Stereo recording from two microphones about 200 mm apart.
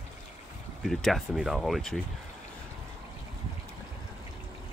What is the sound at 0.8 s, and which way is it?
Speech, centre (ahead or behind).